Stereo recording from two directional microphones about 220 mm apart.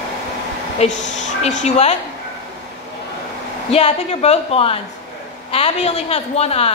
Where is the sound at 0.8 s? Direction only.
30° left (ahead or behind).